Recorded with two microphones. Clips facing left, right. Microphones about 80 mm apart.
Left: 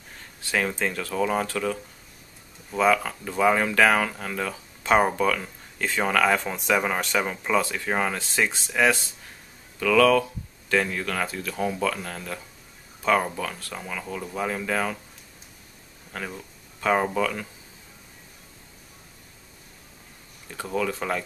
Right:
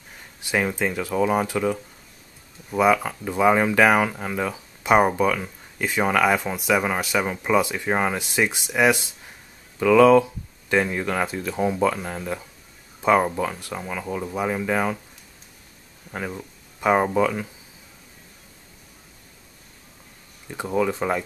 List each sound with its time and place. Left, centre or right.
0.2 s speech: centre
16.1 s speech: centre
20.4 s speech: centre